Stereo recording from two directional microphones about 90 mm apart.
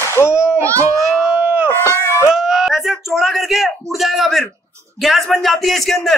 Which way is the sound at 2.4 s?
5° right (ahead or behind).